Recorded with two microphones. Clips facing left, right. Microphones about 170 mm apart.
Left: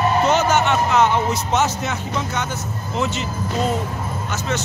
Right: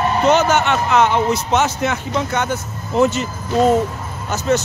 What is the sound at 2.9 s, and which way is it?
Speech, 50° right (ahead or behind).